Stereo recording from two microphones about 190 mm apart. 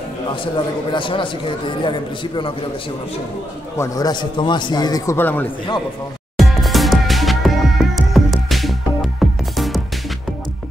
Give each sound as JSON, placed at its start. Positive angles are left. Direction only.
{"t": 0.9, "sound": "a man's voice", "side_deg": 25}
{"t": 3.7, "sound": "a man's voice", "side_deg": 15}
{"t": 6.3, "sound": "music", "side_deg": 0}